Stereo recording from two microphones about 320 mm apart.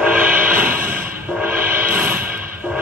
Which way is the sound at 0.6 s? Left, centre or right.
Right.